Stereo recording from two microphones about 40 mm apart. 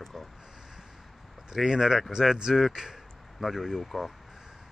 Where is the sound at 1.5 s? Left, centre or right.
Centre.